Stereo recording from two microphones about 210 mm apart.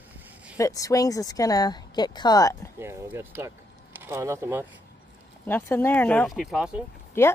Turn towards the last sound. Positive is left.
turn(degrees=10)  # may be behind; listen again after turning